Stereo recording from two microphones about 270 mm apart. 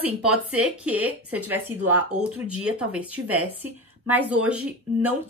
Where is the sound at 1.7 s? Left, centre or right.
Right.